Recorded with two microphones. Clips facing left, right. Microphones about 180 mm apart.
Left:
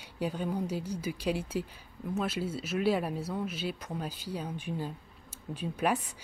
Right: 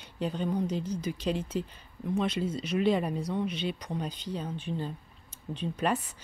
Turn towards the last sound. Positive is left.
turn(degrees=10)  # may be behind; listen again after turning